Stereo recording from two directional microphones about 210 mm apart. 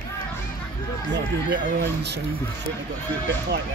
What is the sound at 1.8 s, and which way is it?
Speech, 50° right (ahead or behind).